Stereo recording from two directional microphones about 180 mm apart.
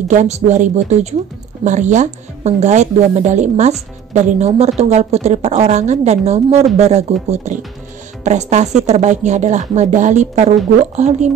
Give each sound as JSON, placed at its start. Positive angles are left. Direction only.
{"t": 0.1, "sound": "a woman's voice", "side_deg": -40}